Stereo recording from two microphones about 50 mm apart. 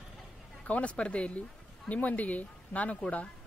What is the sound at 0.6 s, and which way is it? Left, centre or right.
Speech, left.